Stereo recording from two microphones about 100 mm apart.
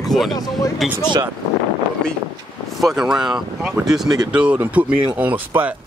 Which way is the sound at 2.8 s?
5° right (ahead or behind).